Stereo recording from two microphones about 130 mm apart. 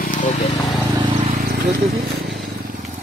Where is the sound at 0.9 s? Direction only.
35° right (ahead or behind).